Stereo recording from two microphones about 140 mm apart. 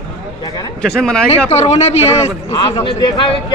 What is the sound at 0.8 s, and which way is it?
Speech, 5° left (ahead or behind).